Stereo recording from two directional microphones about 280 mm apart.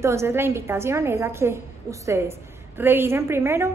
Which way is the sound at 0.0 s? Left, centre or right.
Centre.